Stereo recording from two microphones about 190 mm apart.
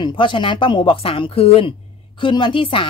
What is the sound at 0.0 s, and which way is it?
A woman's voice, 25° left (ahead or behind).